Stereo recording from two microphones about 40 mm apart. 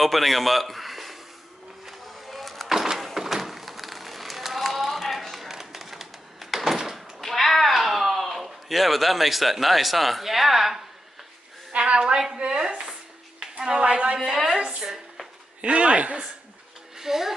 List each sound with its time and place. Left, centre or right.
0.0 s a man's voice: centre
1.9 s a sound: centre
2.7 s a sound: centre
11.7 s a woman's voice: right
13.4 s a sound: centre
13.8 s a woman's voice: right
14.2 s a woman's voice: centre
15.6 s a man's voice: right
16.9 s speech: centre